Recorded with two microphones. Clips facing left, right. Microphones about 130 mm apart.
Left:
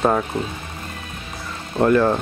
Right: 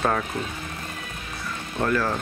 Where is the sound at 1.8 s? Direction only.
30° left (ahead or behind).